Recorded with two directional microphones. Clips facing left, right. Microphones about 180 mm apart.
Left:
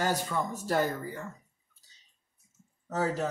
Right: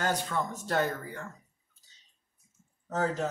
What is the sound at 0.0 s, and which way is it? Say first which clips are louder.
Speech: left 1 dB; 5° left (ahead or behind).